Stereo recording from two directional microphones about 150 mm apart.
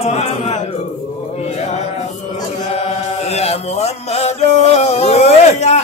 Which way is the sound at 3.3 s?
45° left (ahead or behind).